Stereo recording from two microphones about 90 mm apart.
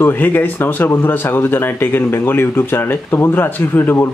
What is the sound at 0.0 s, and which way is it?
Speech, 20° left (ahead or behind).